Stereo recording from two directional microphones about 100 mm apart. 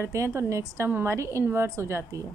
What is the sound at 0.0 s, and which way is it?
A woman's voice, 30° right (ahead or behind).